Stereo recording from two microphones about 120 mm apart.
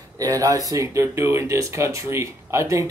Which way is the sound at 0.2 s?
30° right (ahead or behind).